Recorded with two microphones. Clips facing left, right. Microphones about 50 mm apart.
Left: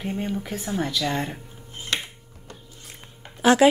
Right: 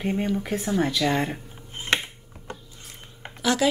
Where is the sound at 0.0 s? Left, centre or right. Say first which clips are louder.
Right 3 dB; centre.